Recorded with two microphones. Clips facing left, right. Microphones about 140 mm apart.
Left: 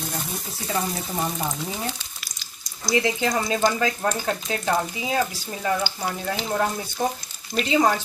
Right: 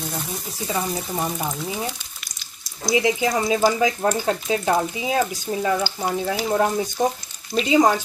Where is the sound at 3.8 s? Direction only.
15° right (ahead or behind).